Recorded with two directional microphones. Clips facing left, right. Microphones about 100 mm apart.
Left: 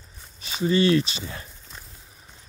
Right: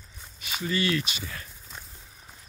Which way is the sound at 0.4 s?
25° left (ahead or behind).